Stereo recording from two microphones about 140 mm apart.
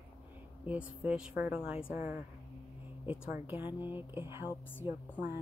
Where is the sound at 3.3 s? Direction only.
15° right (ahead or behind).